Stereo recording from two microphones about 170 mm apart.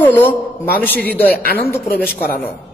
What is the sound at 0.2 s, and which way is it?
A man's voice, 10° left (ahead or behind).